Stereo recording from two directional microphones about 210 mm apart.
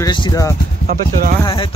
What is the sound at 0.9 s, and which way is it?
Speech, 40° right (ahead or behind).